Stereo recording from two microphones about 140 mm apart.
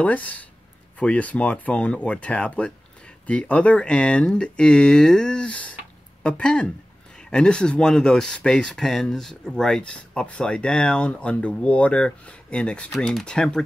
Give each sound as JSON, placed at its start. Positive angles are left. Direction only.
{"t": 0.0, "sound": "speech", "side_deg": 10}